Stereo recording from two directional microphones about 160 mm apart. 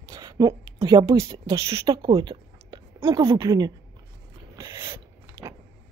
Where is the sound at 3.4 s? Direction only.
25° right (ahead or behind).